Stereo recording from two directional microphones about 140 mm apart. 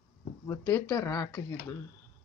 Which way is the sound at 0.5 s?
20° left (ahead or behind).